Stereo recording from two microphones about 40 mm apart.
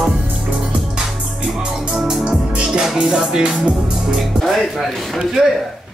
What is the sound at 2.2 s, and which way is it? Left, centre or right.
Music, right.